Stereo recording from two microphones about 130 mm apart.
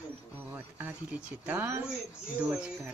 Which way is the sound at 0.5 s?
15° right (ahead or behind).